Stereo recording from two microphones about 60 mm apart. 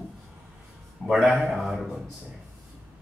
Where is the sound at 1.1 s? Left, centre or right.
Centre.